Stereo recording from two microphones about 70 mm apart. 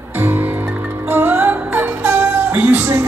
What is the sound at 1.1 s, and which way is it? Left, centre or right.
Music, right.